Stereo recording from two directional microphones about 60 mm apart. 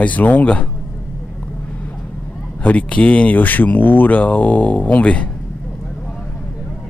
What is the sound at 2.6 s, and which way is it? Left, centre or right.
Speech, left.